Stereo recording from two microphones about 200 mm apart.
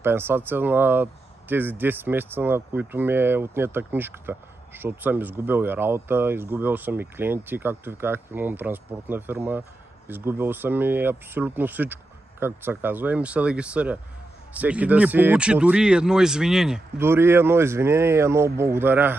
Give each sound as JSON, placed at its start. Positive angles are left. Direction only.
{"t": 0.0, "sound": "speech", "side_deg": -10}